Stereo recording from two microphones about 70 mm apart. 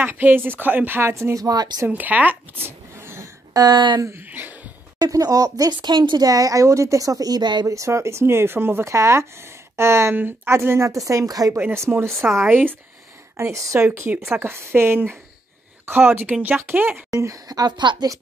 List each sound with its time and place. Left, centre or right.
0.0 s a woman's voice: right
1.3 s speech: right
1.9 s a sound: right
3.5 s speech: right
4.3 s a sound: right
4.9 s speech: right
7.6 s speech: right
10.9 s speech: right
11.5 s speech: right
12.4 s a woman's voice: right
13.4 s a woman's voice: right
13.7 s a woman's voice: right
17.1 s speech: right